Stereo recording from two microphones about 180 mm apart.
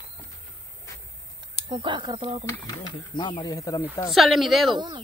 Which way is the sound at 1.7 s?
25° right (ahead or behind).